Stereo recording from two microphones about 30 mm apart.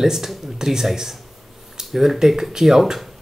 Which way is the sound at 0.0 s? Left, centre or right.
Centre.